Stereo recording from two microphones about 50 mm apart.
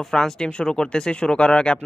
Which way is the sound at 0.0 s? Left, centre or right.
Centre.